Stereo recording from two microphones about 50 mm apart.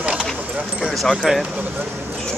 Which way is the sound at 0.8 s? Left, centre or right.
Centre.